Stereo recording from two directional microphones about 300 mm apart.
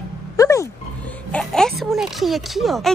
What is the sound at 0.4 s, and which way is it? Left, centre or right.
Dog, centre.